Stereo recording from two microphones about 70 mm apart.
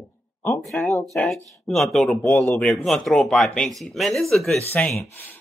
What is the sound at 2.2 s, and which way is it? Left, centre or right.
Speech, left.